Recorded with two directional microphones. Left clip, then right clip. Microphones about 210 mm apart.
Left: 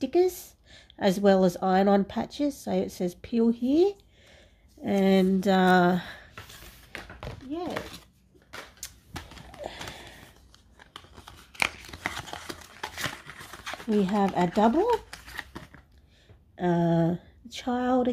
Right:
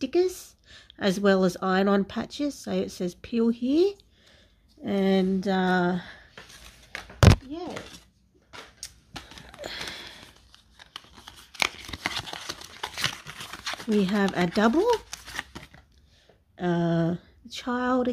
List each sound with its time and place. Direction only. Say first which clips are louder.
0.0 s speech: left 1 dB; 10° right (ahead or behind); by 6.2 s 10° left (ahead or behind)
7.5 s speech: left 3 dB; 10° left (ahead or behind)
9.6 s a sound: right 3 dB; 20° right (ahead or behind)
10.8 s tearing: right 3 dB; 5° right (ahead or behind)
13.9 s speech: even; 20° right (ahead or behind)
16.5 s speech: left 1 dB; 5° right (ahead or behind)